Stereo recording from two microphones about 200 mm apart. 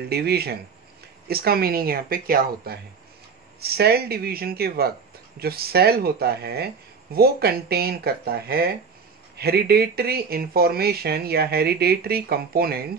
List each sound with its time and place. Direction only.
0.1 s speech: 50° right (ahead or behind)